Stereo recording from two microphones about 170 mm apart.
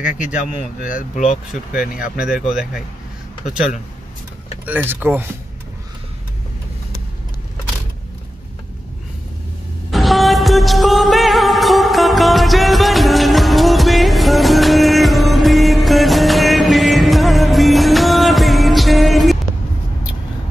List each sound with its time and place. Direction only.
0.0 s speech: 50° left (ahead or behind)
1.8 s speech: 5° right (ahead or behind)
4.6 s speech: 10° right (ahead or behind)
9.8 s music: centre (ahead or behind)